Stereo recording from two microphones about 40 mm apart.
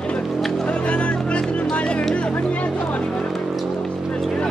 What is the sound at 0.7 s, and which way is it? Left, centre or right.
Music, left.